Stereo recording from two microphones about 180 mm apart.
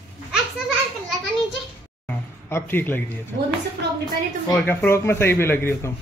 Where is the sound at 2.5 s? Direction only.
10° left (ahead or behind).